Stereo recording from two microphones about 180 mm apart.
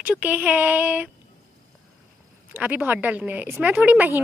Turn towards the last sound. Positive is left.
turn(degrees=-10)  # may be behind; listen again after turning